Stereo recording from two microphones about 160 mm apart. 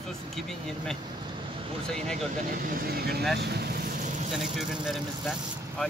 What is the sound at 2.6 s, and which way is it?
Speech, 65° right (ahead or behind).